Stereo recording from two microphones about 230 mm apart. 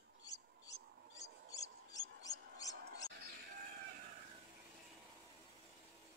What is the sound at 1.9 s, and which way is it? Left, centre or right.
Mouse, centre.